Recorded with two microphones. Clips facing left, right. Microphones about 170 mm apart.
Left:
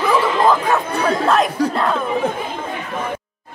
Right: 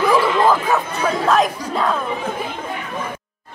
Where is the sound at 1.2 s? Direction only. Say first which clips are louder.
Even; centre (ahead or behind).